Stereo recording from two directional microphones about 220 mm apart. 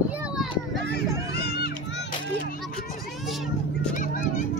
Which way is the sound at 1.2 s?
45° left (ahead or behind).